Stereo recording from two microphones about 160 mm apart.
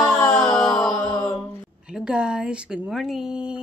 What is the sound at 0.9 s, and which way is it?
Mantra, 20° left (ahead or behind).